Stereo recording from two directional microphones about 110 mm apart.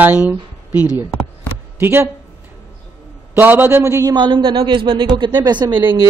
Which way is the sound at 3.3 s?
15° right (ahead or behind).